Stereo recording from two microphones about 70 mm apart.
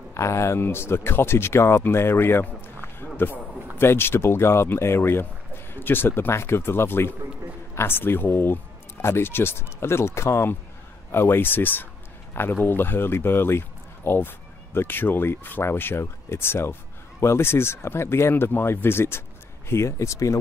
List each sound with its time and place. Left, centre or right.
0.1 s speech: left